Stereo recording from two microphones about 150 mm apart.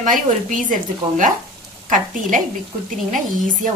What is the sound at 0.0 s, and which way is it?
Speech, 60° right (ahead or behind).